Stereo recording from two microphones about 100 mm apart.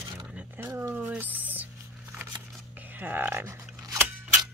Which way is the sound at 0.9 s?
15° right (ahead or behind).